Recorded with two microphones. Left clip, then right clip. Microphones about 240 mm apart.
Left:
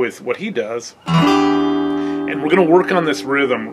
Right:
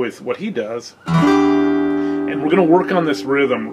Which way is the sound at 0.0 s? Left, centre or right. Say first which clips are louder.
Left 2 dB; centre.